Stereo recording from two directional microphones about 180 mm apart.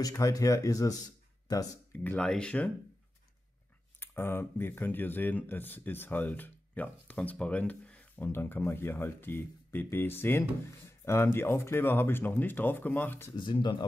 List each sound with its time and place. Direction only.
0.0 s speech: 20° left (ahead or behind)
1.9 s speech: 5° left (ahead or behind)
4.0 s speech: 10° left (ahead or behind)
10.9 s a sound: 15° left (ahead or behind)
11.3 s speech: 15° left (ahead or behind)
13.4 s speech: 25° left (ahead or behind)